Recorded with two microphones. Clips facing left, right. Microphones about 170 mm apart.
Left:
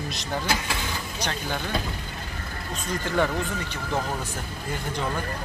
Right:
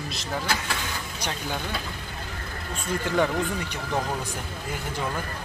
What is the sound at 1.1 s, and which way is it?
Speech, 10° right (ahead or behind).